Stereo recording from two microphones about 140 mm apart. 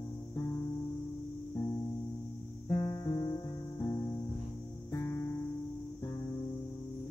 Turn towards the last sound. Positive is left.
turn(degrees=20)  # may be behind; listen again after turning